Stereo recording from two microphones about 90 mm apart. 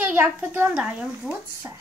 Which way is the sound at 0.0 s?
20° right (ahead or behind).